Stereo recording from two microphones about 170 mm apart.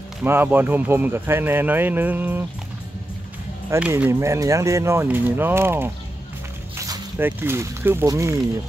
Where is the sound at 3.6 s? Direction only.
10° right (ahead or behind).